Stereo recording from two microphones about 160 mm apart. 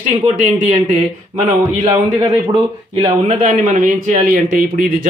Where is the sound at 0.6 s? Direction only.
45° right (ahead or behind).